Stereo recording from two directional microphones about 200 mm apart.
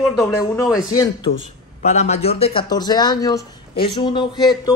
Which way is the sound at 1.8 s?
35° left (ahead or behind).